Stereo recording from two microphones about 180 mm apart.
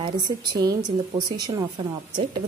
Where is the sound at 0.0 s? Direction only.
20° right (ahead or behind).